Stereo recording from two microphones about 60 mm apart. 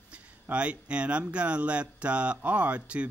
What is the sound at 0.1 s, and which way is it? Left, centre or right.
Speech, right.